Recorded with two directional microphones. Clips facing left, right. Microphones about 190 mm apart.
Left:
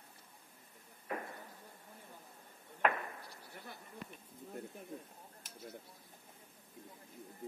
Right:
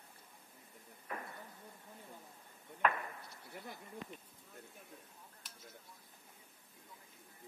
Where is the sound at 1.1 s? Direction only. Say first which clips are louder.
Left 4 dB; 35° left (ahead or behind).